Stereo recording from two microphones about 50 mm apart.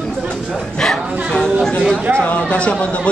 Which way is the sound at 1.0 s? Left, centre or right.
Right.